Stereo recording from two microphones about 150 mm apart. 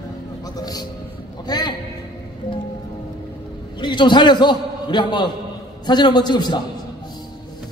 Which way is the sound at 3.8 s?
30° left (ahead or behind).